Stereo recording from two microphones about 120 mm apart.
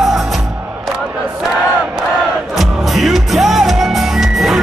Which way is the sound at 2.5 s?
Centre (ahead or behind).